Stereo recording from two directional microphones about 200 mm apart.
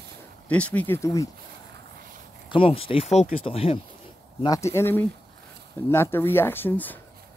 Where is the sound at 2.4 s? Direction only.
25° left (ahead or behind).